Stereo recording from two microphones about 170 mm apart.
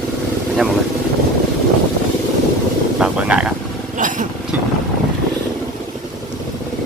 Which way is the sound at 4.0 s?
50° right (ahead or behind).